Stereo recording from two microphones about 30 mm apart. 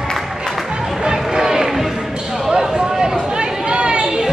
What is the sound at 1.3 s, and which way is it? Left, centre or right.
Crowd, centre.